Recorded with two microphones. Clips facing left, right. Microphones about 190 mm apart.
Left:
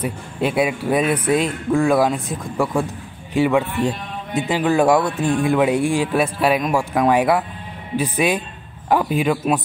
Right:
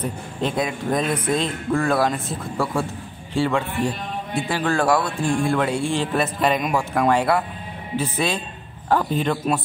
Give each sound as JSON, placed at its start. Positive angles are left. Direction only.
{"t": 0.0, "sound": "a man's voice", "side_deg": 10}
{"t": 7.1, "sound": "a man's voice", "side_deg": 15}